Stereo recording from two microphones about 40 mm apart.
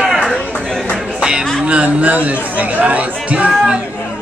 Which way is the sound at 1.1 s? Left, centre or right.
Right.